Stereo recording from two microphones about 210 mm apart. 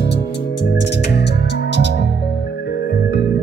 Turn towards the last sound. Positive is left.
turn(degrees=50)  # may be behind; listen again after turning